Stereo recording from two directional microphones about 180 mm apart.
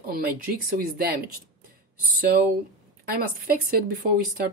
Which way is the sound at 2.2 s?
55° right (ahead or behind).